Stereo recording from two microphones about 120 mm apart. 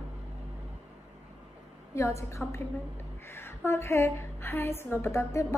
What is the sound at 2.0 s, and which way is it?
Speech, 25° left (ahead or behind).